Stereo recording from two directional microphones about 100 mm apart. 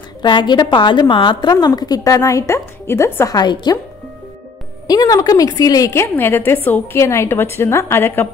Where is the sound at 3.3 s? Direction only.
45° left (ahead or behind).